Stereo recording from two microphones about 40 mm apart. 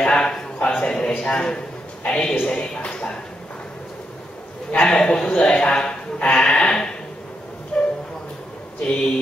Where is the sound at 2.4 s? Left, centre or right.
Left.